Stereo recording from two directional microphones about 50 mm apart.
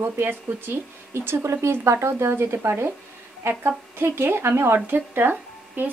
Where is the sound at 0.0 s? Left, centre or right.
Right.